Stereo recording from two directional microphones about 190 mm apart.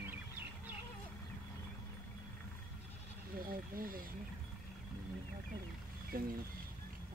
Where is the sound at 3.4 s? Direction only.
50° right (ahead or behind).